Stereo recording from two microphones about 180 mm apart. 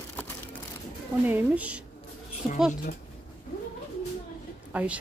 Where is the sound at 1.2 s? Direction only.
10° right (ahead or behind).